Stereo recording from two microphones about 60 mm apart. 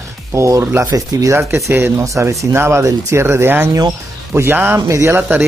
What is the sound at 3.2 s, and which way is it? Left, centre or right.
Speech, right.